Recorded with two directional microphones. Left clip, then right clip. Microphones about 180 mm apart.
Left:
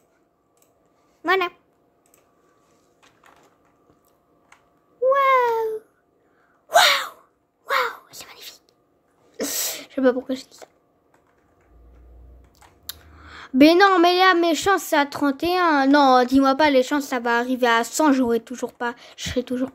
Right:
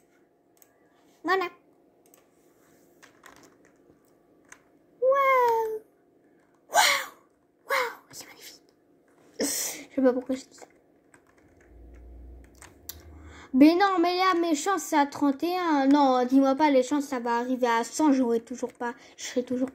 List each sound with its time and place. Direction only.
1.2 s speech: 20° left (ahead or behind)
5.1 s a sound: 25° left (ahead or behind)
6.7 s gasp: 20° left (ahead or behind)
7.6 s crow: 20° left (ahead or behind)
9.4 s a sound: 25° left (ahead or behind)
12.8 s speech: 25° left (ahead or behind)